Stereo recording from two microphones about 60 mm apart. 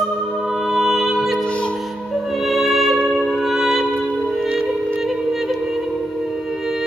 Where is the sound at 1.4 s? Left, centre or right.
Centre.